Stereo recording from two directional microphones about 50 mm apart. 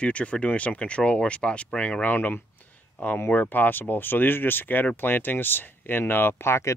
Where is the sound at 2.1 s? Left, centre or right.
Left.